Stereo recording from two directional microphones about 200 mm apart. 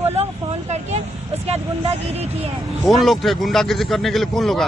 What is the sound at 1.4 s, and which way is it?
Speech, 30° right (ahead or behind).